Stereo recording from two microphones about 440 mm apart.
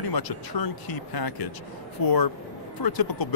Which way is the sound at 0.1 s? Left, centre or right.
Left.